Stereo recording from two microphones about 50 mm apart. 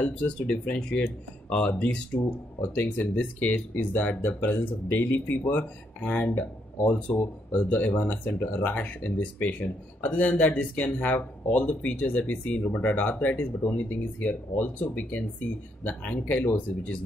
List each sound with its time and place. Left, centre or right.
0.7 s speech: left